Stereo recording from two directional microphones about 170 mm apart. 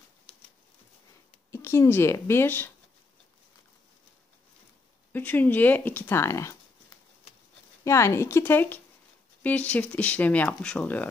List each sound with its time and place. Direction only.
1.5 s a woman's voice: 15° left (ahead or behind)
5.1 s speech: 10° left (ahead or behind)
7.8 s speech: 15° left (ahead or behind)